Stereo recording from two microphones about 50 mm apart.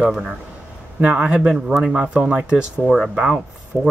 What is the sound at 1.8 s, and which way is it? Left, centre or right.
Speech, centre.